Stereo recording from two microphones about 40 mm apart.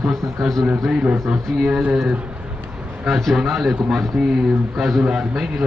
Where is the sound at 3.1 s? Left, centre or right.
Centre.